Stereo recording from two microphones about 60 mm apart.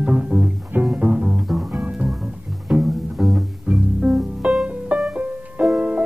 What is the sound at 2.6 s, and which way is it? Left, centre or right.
Music, centre.